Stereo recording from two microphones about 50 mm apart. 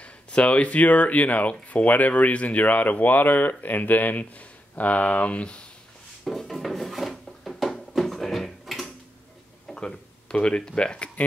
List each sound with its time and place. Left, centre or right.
0.0 s speech: left
6.2 s wood: centre
7.9 s a sound: centre
9.8 s speech: centre